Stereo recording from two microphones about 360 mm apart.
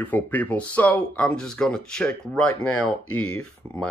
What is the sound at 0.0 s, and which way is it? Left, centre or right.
Speech, centre.